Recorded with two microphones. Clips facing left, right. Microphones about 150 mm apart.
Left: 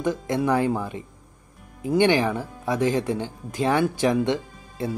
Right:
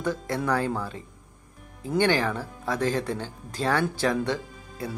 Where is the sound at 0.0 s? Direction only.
15° left (ahead or behind).